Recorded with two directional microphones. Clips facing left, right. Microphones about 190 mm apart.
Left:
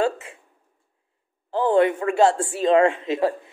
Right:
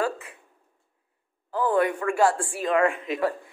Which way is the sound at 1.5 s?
25° left (ahead or behind).